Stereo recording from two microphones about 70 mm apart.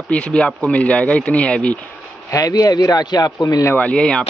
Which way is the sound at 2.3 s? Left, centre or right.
Left.